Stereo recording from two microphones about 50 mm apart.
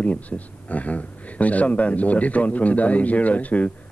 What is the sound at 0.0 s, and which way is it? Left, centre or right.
A man's voice, left.